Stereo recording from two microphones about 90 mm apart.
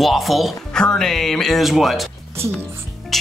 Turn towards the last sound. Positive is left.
turn(degrees=0)  # may be behind; listen again after turning